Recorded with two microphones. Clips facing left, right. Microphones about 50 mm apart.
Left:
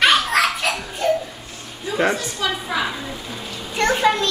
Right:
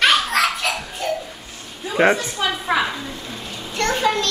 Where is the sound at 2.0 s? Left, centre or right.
Right.